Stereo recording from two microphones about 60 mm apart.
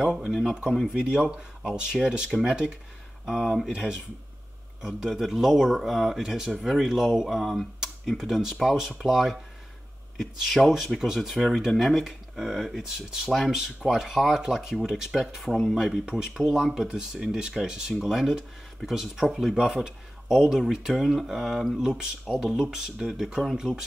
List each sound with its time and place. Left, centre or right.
0.0 s speech: centre
3.3 s speech: centre
3.7 s speech: centre
23.7 s speech: centre